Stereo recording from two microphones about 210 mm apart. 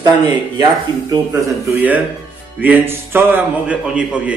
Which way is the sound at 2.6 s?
10° right (ahead or behind).